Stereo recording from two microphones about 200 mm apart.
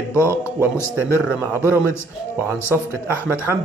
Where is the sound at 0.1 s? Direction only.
10° left (ahead or behind).